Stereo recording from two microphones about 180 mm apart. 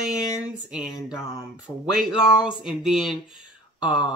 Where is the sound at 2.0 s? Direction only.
5° right (ahead or behind).